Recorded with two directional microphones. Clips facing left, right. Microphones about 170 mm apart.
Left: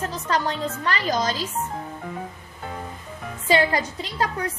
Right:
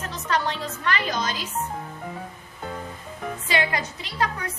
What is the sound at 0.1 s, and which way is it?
A woman's voice, 35° left (ahead or behind).